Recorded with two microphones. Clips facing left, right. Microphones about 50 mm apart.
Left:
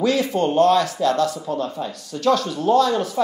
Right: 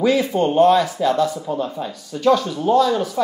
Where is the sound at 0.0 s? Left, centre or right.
Centre.